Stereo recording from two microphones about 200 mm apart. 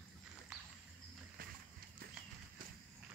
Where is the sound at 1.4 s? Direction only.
45° right (ahead or behind).